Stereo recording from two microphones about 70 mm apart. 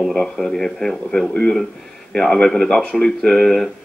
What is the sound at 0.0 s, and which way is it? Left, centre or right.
Speech, centre.